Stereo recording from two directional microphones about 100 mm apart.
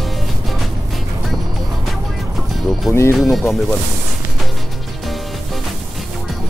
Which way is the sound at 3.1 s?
Centre (ahead or behind).